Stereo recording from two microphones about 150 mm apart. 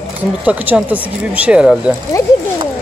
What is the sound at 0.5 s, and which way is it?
Speech, 10° right (ahead or behind).